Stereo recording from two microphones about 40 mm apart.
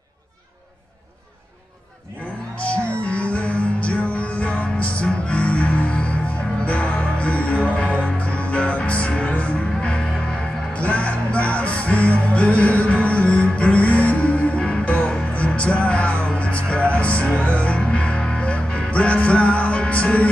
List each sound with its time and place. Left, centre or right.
2.5 s music: left
9.8 s music: left
10.7 s music: left